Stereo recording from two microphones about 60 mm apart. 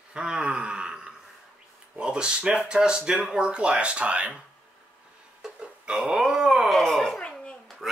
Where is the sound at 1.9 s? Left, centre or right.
Centre.